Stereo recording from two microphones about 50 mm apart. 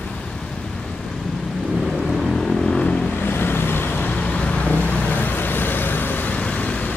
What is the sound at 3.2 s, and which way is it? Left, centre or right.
Vehicle, left.